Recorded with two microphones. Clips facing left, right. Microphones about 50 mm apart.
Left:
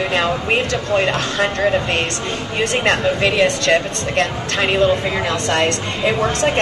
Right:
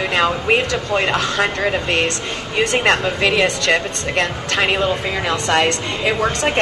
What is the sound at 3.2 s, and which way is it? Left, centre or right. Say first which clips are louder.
Speech: left 1 dB; centre.